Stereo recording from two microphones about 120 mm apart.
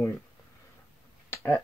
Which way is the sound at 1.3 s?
20° left (ahead or behind).